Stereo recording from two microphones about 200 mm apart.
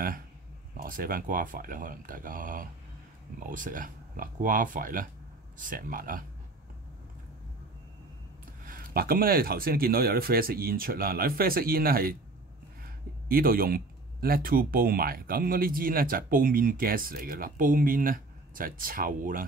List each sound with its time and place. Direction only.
0.8 s speech: 45° right (ahead or behind)
8.6 s speech: 45° right (ahead or behind)